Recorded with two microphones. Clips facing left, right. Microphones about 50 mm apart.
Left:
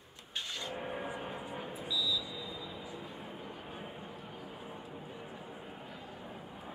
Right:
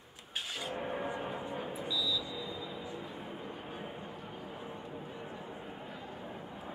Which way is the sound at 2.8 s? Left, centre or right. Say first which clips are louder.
Right 2 dB; centre.